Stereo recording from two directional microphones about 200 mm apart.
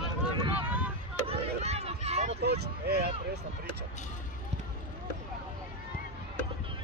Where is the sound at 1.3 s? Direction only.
30° right (ahead or behind).